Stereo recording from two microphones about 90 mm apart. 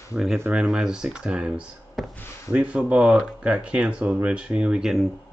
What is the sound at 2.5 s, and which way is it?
Speech, 15° right (ahead or behind).